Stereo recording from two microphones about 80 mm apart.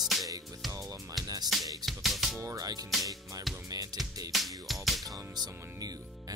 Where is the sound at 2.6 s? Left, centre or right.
Right.